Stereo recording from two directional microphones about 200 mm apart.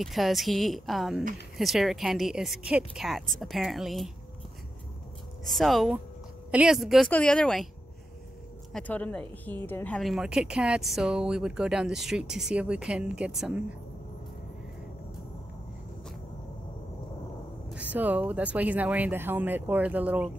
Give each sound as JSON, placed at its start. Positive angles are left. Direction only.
{"t": 0.0, "sound": "speech", "side_deg": 0}
{"t": 5.4, "sound": "speech", "side_deg": 0}
{"t": 8.7, "sound": "speech", "side_deg": 5}
{"t": 17.6, "sound": "speech", "side_deg": -5}